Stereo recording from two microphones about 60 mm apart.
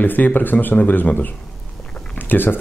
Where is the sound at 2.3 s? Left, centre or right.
Left.